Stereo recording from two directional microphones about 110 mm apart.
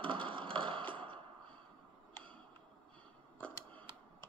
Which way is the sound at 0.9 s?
50° right (ahead or behind).